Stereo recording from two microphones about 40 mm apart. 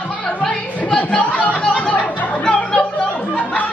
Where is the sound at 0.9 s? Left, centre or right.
Left.